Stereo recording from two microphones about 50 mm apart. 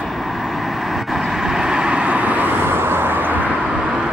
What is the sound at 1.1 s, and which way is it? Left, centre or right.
Vehicle, centre.